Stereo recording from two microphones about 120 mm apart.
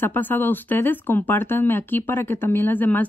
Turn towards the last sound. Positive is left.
turn(degrees=15)  # may be behind; listen again after turning